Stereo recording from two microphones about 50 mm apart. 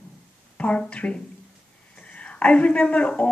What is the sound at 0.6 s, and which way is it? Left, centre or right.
Speech, left.